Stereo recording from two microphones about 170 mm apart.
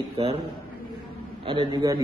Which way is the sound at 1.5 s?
25° right (ahead or behind).